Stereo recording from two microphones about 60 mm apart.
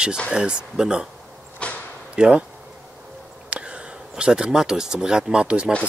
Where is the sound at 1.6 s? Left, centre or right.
Centre.